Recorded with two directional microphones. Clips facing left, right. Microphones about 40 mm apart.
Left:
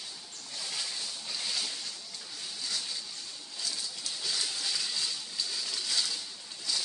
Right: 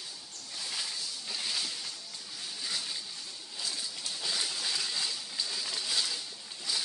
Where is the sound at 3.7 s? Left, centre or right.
Centre.